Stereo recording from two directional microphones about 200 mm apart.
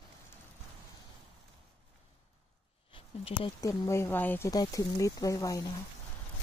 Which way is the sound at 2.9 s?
25° left (ahead or behind).